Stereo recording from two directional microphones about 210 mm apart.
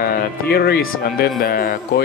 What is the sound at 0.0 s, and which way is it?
Speech, 45° left (ahead or behind).